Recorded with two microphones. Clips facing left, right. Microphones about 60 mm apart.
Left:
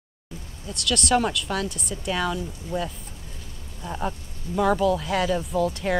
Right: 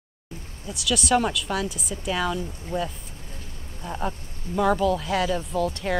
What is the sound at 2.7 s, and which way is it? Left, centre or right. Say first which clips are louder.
Speech: right 1 dB; right.